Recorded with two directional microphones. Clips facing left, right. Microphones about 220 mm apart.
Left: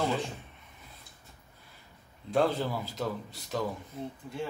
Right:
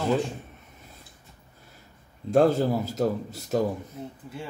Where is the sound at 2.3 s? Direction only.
45° right (ahead or behind).